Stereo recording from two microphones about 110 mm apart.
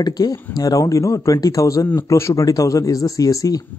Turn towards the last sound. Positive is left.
turn(degrees=30)  # may be behind; listen again after turning